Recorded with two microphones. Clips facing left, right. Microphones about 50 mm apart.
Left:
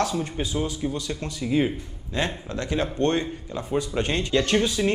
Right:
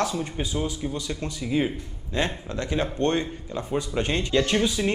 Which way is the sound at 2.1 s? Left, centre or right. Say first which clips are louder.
Even; right.